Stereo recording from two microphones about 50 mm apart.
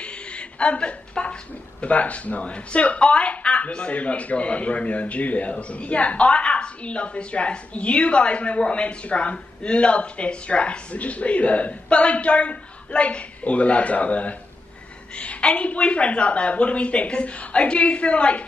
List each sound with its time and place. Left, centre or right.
0.0 s a woman's voice: left